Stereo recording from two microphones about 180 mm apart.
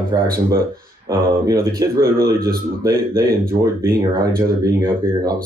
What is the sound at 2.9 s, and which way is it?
Speech, 55° right (ahead or behind).